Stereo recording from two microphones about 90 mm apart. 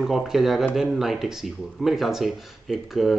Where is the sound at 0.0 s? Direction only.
5° right (ahead or behind).